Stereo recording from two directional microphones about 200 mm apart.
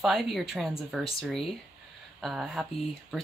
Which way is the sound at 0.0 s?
Centre (ahead or behind).